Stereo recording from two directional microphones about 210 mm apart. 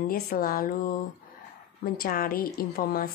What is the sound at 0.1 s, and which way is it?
Speech, 45° left (ahead or behind).